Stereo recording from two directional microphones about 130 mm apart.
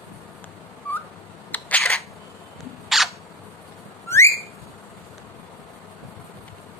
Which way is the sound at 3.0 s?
Centre (ahead or behind).